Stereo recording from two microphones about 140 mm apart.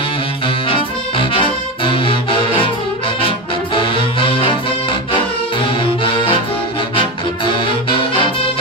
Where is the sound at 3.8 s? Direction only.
40° left (ahead or behind).